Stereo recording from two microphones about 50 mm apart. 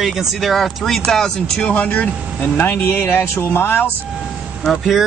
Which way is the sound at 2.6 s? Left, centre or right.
Left.